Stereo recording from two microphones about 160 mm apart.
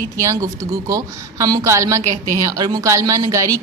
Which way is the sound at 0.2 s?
20° right (ahead or behind).